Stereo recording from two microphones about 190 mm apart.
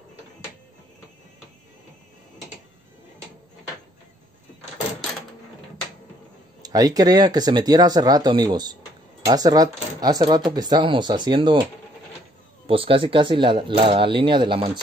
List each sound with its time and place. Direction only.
6.6 s speech: 20° right (ahead or behind)